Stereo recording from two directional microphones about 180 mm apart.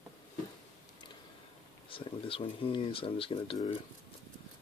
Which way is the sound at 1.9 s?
30° left (ahead or behind).